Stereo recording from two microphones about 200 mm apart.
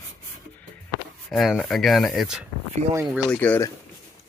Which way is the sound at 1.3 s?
Centre (ahead or behind).